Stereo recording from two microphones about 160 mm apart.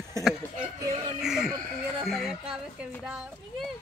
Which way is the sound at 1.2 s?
5° right (ahead or behind).